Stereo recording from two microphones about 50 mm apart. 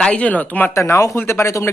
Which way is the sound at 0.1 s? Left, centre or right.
Left.